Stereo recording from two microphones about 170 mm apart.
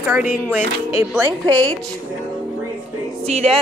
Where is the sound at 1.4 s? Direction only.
30° right (ahead or behind).